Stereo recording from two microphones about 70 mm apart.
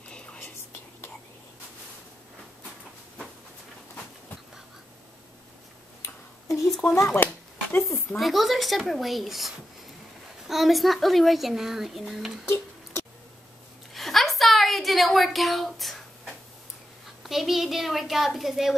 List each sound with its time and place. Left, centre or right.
6.8 s speech: left
7.7 s a sound: left
8.2 s a woman's voice: centre
12.4 s tick-tock: left
13.9 s a sound: centre
17.2 s a woman's voice: centre